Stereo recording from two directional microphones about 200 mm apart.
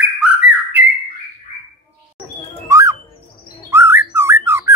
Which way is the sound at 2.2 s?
5° right (ahead or behind).